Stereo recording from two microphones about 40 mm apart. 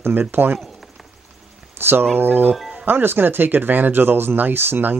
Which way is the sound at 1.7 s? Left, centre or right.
Right.